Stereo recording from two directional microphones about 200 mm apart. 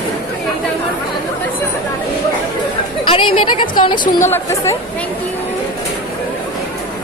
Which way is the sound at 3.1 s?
25° left (ahead or behind).